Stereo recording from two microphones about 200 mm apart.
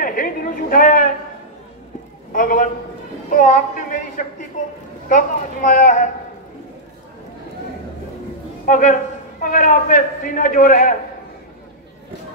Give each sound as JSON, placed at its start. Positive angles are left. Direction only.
{"t": 0.0, "sound": "chatter", "side_deg": 45}
{"t": 2.3, "sound": "a man's voice", "side_deg": 40}
{"t": 8.6, "sound": "a man's voice", "side_deg": 40}